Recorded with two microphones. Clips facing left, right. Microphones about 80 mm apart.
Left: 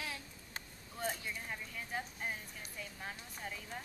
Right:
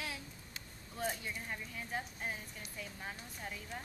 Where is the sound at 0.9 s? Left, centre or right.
Centre.